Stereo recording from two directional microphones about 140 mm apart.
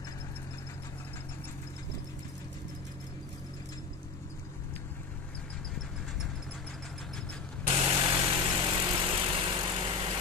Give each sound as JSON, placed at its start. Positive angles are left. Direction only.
{"t": 7.6, "sound": "vehicle", "side_deg": -40}